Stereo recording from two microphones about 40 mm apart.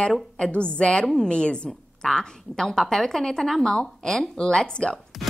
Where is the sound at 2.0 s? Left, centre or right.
Centre.